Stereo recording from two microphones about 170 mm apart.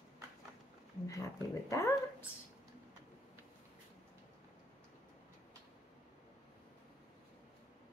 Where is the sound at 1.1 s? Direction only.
20° left (ahead or behind).